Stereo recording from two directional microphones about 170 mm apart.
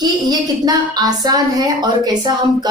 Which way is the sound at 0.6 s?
25° right (ahead or behind).